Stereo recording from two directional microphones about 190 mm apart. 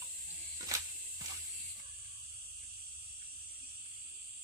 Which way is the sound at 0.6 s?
20° right (ahead or behind).